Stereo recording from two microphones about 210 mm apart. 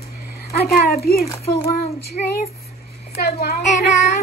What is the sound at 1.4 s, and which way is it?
Speech, 30° left (ahead or behind).